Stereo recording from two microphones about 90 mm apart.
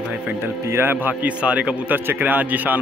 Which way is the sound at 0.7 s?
20° right (ahead or behind).